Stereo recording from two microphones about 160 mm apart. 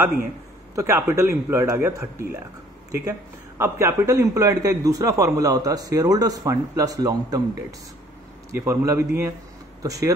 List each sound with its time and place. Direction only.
0.7 s speech: 20° right (ahead or behind)
8.5 s speech: 20° right (ahead or behind)